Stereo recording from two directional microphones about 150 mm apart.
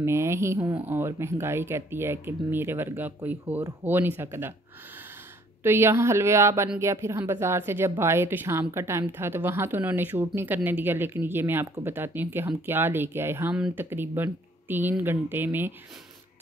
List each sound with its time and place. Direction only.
0.0 s a woman's voice: 15° right (ahead or behind)
5.6 s a woman's voice: 15° right (ahead or behind)